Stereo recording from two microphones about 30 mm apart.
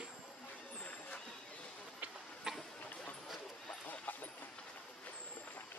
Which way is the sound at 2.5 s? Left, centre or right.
Right.